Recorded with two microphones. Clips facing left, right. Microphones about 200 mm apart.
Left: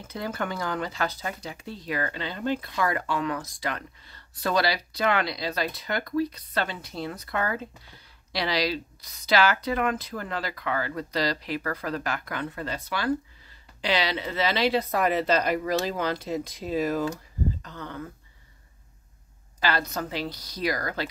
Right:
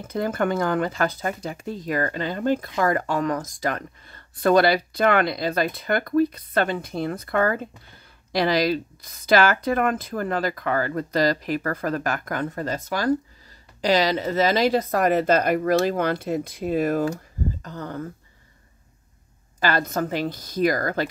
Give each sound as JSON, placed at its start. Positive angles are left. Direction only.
{"t": 0.0, "sound": "speech", "side_deg": -50}
{"t": 17.6, "sound": "speech", "side_deg": -45}
{"t": 19.6, "sound": "speech", "side_deg": -50}